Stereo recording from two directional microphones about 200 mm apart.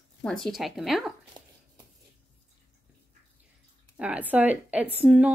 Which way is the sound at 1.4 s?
20° right (ahead or behind).